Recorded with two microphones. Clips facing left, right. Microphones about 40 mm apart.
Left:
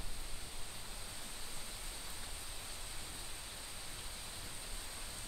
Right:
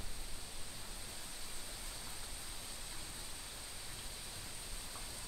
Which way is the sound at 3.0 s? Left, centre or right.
Left.